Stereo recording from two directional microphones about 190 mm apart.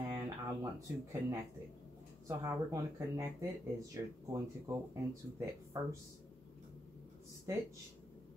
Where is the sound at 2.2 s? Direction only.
15° right (ahead or behind).